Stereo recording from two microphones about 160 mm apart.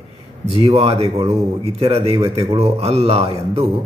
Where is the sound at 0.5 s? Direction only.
40° right (ahead or behind).